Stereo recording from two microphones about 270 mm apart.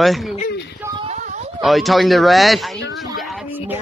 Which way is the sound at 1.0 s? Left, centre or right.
Right.